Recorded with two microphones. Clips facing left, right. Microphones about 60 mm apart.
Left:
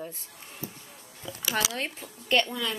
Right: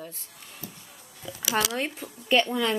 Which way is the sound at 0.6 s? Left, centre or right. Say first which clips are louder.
Left 3 dB; left.